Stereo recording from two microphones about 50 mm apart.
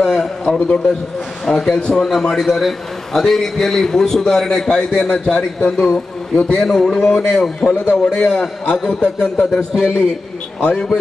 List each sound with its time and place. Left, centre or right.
0.0 s a sound: centre
1.4 s a man's voice: centre
2.0 s a man's voice: centre